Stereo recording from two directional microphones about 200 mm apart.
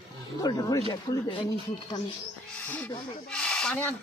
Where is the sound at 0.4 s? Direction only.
20° left (ahead or behind).